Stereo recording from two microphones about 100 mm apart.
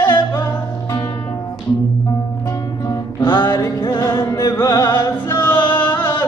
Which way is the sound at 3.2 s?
45° left (ahead or behind).